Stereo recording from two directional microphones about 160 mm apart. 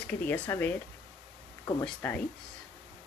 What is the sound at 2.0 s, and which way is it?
Speech, 10° left (ahead or behind).